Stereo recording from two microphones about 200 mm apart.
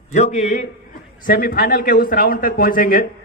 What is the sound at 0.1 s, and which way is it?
Speech, 35° left (ahead or behind).